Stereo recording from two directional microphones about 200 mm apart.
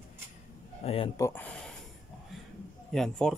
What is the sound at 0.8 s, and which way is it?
Speech, 30° left (ahead or behind).